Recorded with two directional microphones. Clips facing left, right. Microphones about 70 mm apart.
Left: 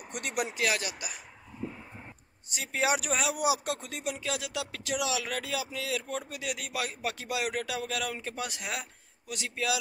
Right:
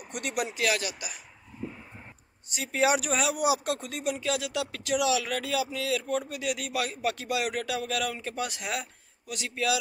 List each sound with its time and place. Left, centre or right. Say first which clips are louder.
0.1 s speech: right 1 dB; left
2.5 s speech: right 4 dB; centre